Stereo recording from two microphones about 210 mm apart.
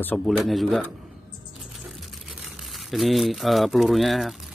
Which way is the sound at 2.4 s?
Centre (ahead or behind).